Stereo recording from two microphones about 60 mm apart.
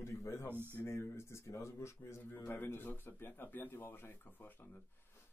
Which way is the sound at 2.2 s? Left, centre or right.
Left.